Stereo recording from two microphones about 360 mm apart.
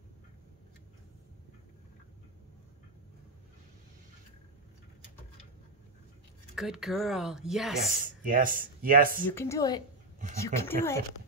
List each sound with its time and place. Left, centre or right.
6.5 s a woman's voice: centre
8.0 s speech: right
9.3 s a woman's voice: centre